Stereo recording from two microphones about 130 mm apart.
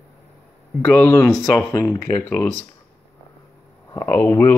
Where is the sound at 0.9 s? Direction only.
15° left (ahead or behind).